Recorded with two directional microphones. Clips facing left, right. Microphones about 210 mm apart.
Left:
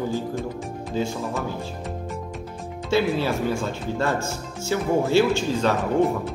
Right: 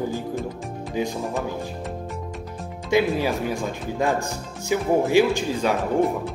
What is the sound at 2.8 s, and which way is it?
Speech, 15° right (ahead or behind).